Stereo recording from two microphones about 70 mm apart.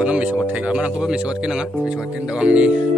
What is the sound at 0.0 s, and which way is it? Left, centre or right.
Speech, centre.